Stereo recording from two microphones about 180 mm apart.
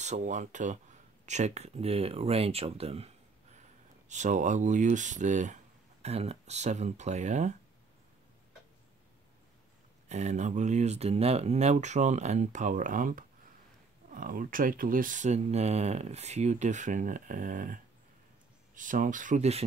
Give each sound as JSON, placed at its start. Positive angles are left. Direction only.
{"t": 0.0, "sound": "speech", "side_deg": -40}
{"t": 4.1, "sound": "speech", "side_deg": -40}
{"t": 10.0, "sound": "speech", "side_deg": -40}
{"t": 18.8, "sound": "speech", "side_deg": -45}